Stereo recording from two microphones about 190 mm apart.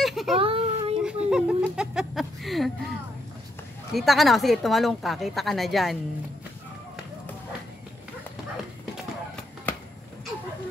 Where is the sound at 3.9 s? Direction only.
Centre (ahead or behind).